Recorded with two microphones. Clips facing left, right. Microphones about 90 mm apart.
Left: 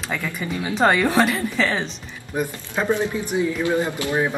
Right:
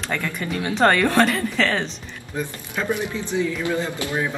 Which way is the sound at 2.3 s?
20° left (ahead or behind).